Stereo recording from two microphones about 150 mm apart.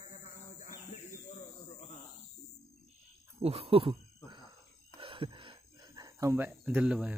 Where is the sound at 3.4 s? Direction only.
40° right (ahead or behind).